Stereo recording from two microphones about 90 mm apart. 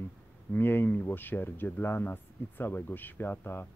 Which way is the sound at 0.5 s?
25° left (ahead or behind).